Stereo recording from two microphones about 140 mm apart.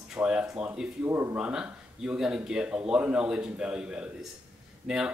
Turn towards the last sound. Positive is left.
turn(degrees=-5)  # may be behind; listen again after turning